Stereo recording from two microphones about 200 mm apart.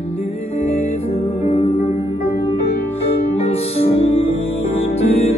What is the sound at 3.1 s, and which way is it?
Music, 30° left (ahead or behind).